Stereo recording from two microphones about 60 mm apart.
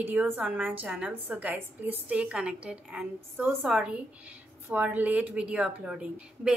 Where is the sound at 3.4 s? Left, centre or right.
Right.